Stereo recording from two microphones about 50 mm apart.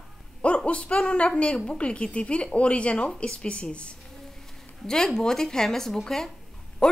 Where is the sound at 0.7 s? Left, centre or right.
Left.